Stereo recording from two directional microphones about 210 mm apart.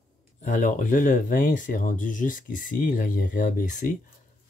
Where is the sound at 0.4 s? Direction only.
35° left (ahead or behind).